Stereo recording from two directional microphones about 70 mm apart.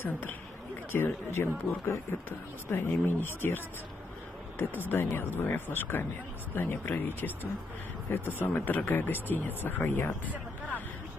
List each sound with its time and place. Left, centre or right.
0.0 s speech: left
8.4 s speech: left